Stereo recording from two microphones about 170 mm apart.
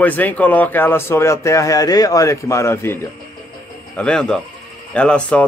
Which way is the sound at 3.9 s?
5° left (ahead or behind).